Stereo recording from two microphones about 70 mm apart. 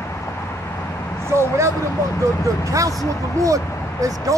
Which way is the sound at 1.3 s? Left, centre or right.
Right.